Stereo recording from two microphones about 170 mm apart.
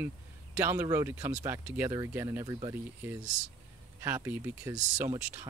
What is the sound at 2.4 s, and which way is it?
Speech, 25° right (ahead or behind).